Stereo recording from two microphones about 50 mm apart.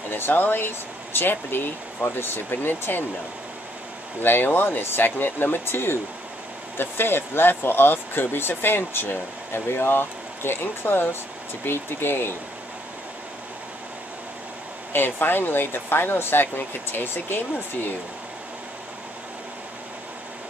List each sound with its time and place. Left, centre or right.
0.1 s speech: left
4.2 s speech: left
14.9 s speech: left